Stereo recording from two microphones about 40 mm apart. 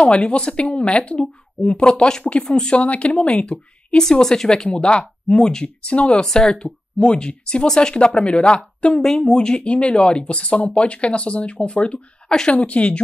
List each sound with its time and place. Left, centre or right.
0.0 s speech: left
2.8 s speech: left
3.4 s speech: left
4.6 s speech: left
7.6 s speech: centre
7.9 s speech: left
9.0 s speech: centre
9.3 s speech: left
12.3 s speech: centre
12.6 s speech: left